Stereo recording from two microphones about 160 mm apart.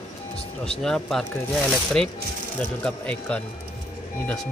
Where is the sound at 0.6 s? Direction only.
Centre (ahead or behind).